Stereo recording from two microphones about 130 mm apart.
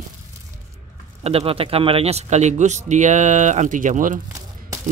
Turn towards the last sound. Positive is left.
turn(degrees=-85)